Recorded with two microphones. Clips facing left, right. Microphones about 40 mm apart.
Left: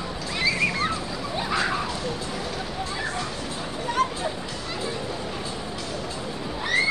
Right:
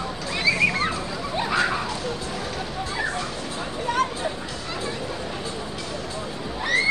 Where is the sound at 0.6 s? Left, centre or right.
Centre.